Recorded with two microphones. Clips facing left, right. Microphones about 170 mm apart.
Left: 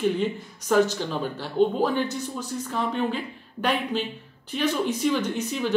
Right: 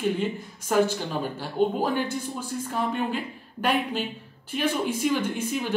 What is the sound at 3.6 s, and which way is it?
Speech, 10° right (ahead or behind).